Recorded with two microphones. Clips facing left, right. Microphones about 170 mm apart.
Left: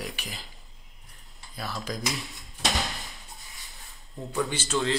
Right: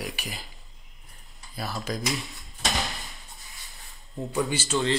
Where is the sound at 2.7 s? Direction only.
Centre (ahead or behind).